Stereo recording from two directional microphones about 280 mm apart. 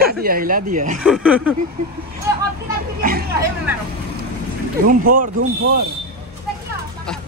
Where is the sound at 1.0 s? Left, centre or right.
Centre.